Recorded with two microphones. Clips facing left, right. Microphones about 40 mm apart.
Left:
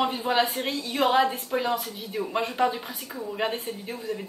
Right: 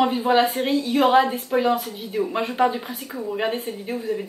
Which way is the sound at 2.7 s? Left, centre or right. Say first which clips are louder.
Right 4 dB; centre.